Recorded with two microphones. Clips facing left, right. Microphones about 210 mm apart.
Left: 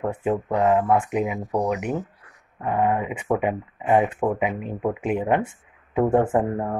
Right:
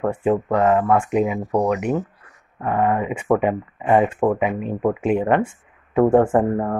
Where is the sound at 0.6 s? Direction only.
75° right (ahead or behind).